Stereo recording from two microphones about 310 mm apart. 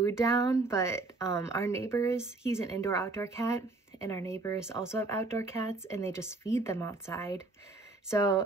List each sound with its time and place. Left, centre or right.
0.0 s speech: centre